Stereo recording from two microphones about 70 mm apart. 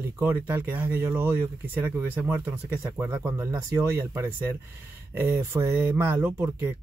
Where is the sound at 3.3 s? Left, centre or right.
Right.